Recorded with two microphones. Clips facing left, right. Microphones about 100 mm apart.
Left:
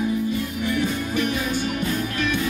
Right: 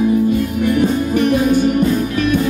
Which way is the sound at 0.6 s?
50° right (ahead or behind).